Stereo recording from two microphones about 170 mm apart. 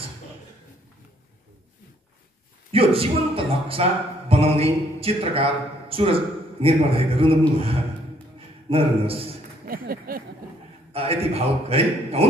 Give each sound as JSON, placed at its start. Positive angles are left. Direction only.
{"t": 2.7, "sound": "speech", "side_deg": -35}
{"t": 9.7, "sound": "a sound", "side_deg": -60}
{"t": 10.9, "sound": "speech", "side_deg": -35}